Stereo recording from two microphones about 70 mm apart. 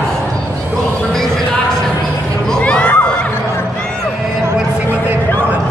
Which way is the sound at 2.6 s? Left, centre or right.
Centre.